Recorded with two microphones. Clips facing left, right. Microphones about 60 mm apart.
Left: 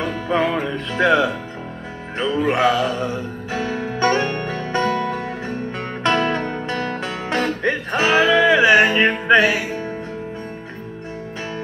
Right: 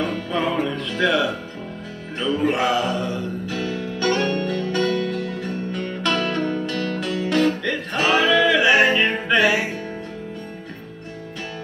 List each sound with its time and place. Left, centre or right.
0.1 s music: left